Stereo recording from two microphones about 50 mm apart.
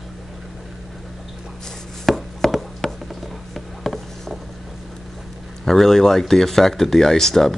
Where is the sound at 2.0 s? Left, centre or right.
Centre.